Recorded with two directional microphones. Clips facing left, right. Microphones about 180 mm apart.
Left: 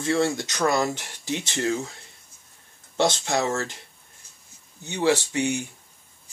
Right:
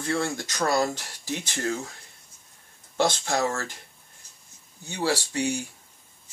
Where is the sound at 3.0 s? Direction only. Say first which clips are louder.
Left 1 dB; 20° left (ahead or behind).